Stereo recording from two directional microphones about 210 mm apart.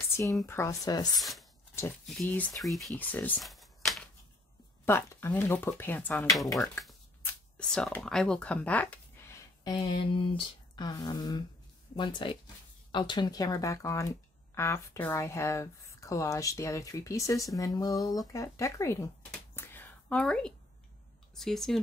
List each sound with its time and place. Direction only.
0.1 s a woman's voice: 15° left (ahead or behind)
1.1 s speech: centre (ahead or behind)
4.8 s speech: 10° left (ahead or behind)
19.5 s whispering: 10° left (ahead or behind)
21.4 s speech: centre (ahead or behind)